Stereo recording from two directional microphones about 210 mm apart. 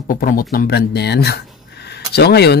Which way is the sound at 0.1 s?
40° left (ahead or behind).